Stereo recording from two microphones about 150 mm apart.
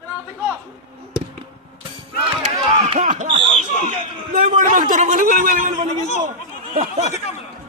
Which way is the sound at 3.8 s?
60° right (ahead or behind).